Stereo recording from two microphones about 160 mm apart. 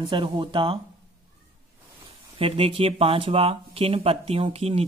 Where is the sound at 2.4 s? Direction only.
35° right (ahead or behind).